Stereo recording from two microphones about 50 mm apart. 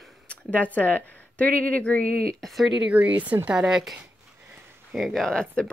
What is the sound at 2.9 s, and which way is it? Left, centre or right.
Speech, right.